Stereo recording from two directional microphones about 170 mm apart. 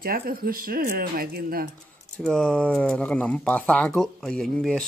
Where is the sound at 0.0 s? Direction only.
60° right (ahead or behind).